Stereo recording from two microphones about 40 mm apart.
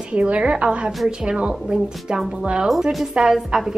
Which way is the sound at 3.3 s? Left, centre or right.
Centre.